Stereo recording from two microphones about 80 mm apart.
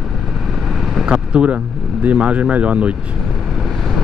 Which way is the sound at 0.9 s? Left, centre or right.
Centre.